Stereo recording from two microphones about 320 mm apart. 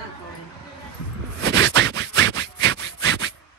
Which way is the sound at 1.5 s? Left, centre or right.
Right.